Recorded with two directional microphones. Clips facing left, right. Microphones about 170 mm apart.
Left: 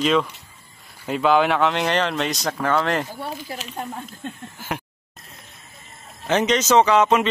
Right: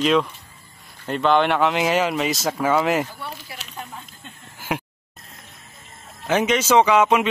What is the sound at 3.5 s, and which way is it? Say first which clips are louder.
Speech: left 6 dB; 40° left (ahead or behind).